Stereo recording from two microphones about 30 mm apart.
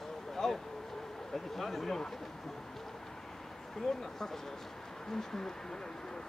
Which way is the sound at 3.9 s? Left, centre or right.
Centre.